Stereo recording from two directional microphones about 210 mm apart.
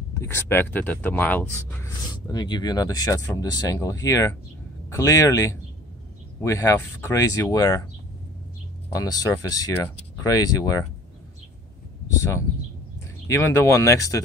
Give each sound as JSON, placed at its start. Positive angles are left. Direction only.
{"t": 0.2, "sound": "speech", "side_deg": 10}
{"t": 8.9, "sound": "speech", "side_deg": 15}
{"t": 12.2, "sound": "speech", "side_deg": 15}